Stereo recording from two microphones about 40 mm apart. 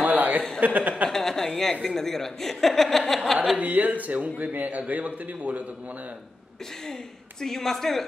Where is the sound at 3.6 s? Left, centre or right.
Right.